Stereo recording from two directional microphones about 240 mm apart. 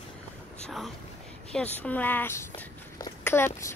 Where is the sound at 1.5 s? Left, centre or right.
Centre.